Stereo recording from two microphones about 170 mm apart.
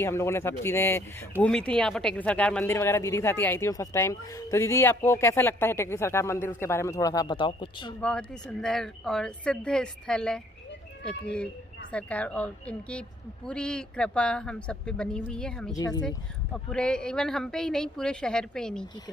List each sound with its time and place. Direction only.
0.0 s speech: 15° left (ahead or behind)
8.0 s speech: 5° left (ahead or behind)
11.9 s speech: 5° left (ahead or behind)
15.7 s speech: 20° left (ahead or behind)
16.5 s speech: 5° left (ahead or behind)